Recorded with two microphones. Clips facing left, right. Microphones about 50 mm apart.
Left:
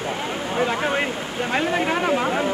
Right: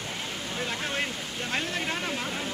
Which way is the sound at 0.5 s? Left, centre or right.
Left.